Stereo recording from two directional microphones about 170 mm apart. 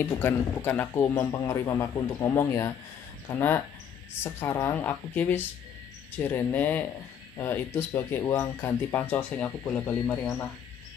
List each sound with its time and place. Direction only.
0.0 s speech: 15° left (ahead or behind)